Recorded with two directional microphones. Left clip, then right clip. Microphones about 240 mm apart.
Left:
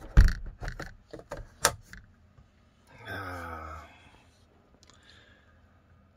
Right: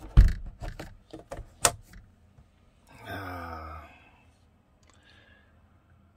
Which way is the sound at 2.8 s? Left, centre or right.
Centre.